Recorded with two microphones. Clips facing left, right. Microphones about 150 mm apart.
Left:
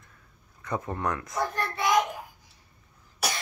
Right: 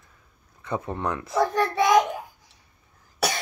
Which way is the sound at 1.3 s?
90° right.